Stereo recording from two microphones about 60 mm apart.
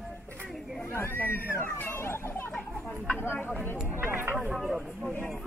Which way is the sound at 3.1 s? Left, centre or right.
Left.